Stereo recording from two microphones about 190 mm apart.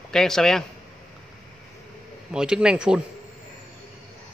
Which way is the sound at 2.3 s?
5° right (ahead or behind).